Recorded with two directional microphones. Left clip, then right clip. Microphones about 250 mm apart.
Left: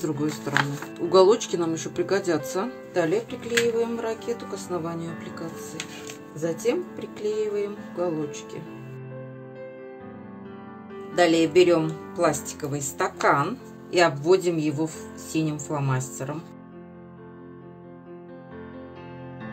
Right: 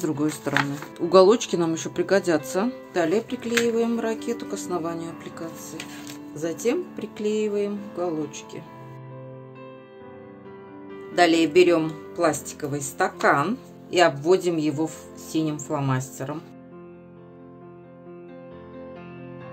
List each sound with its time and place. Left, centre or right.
0.2 s speech: centre
6.4 s speech: centre
11.1 s speech: centre